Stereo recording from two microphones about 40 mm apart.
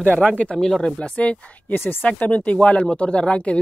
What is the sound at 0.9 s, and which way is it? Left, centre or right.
Speech, left.